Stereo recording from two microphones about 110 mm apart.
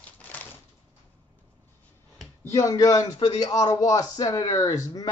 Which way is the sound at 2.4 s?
30° left (ahead or behind).